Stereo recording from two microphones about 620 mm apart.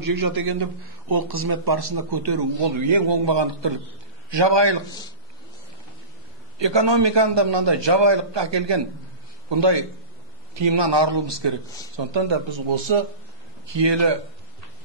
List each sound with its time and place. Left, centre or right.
0.0 s a man's voice: right
6.6 s a man's voice: right